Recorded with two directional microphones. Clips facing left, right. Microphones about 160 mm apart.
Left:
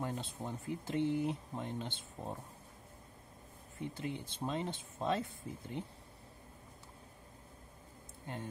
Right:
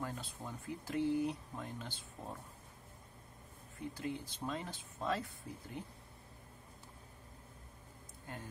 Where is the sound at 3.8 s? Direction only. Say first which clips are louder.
Left 1 dB; 20° left (ahead or behind).